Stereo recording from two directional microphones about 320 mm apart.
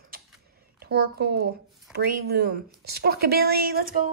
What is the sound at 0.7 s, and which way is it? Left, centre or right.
Speech, right.